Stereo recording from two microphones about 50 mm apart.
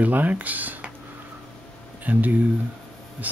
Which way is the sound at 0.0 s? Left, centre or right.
Right.